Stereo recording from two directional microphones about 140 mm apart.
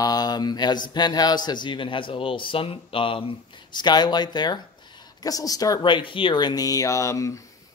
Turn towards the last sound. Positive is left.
turn(degrees=20)  # may be behind; listen again after turning